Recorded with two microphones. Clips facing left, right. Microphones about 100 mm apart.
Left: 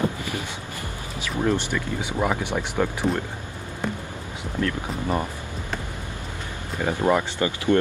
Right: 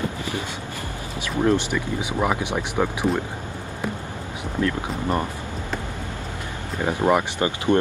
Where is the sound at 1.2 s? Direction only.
15° right (ahead or behind).